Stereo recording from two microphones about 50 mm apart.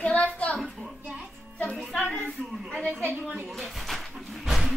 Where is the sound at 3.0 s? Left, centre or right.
Right.